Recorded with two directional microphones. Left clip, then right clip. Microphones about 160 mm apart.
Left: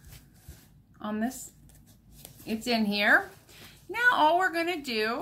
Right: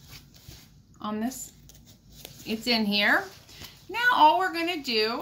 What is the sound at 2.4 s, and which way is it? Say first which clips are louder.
A woman's voice: right 2 dB; 40° left (ahead or behind).